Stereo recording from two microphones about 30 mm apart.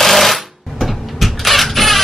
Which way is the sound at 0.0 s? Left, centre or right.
Centre.